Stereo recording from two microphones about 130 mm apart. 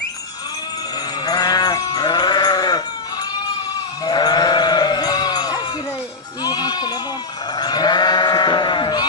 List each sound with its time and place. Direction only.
1.2 s sheep: 30° left (ahead or behind)
4.0 s sheep: 30° left (ahead or behind)